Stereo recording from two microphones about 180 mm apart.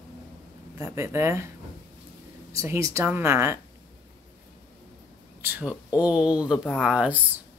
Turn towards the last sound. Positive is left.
turn(degrees=-10)  # may be behind; listen again after turning